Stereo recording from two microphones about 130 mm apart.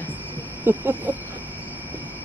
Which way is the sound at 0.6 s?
15° right (ahead or behind).